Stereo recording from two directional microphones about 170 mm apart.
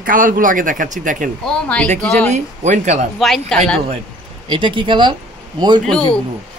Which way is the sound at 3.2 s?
Centre (ahead or behind).